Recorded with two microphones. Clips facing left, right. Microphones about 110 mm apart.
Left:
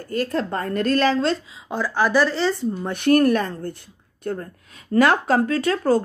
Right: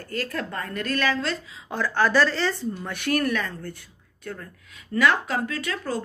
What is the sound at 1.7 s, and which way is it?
A woman's voice, 10° left (ahead or behind).